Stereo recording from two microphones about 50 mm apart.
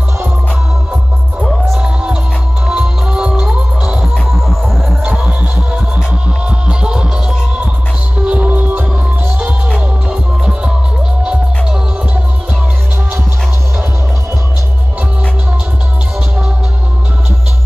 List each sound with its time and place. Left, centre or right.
2.7 s music: centre
4.1 s music: centre
6.7 s music: centre
8.3 s music: right
10.0 s music: centre